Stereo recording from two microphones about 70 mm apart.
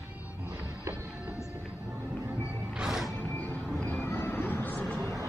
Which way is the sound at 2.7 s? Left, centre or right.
Centre.